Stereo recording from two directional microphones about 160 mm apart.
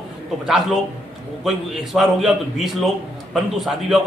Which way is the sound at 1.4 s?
Centre (ahead or behind).